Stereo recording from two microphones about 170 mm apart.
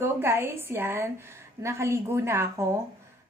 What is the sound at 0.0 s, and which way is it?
A woman's voice, 15° right (ahead or behind).